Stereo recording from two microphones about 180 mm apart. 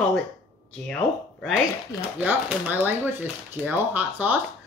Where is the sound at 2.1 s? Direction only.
10° right (ahead or behind).